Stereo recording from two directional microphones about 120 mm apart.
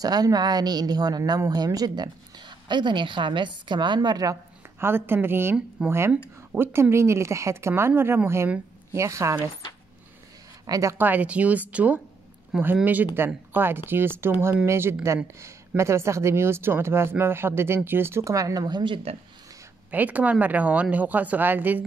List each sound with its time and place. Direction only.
0.0 s speech: 30° right (ahead or behind)
4.7 s speech: 20° right (ahead or behind)
10.7 s speech: 25° right (ahead or behind)
11.0 s speech: 15° right (ahead or behind); by 18.9 s 35° right (ahead or behind)
19.9 s speech: 15° right (ahead or behind)